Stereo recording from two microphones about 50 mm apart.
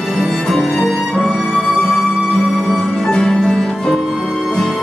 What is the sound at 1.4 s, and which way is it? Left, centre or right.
Music, centre.